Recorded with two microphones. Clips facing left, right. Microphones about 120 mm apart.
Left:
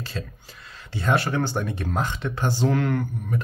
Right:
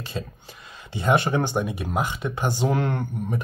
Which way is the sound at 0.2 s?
20° right (ahead or behind).